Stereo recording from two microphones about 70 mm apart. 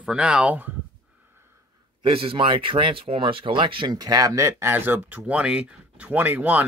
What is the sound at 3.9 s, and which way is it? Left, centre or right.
Speech, right.